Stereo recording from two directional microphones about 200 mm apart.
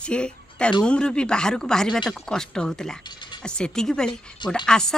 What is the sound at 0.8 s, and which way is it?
Speech, 5° left (ahead or behind).